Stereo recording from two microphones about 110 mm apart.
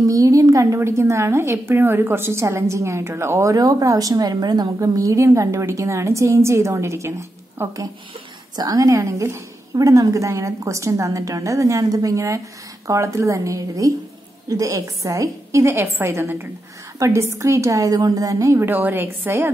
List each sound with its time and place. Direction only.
0.0 s a woman's voice: 30° right (ahead or behind)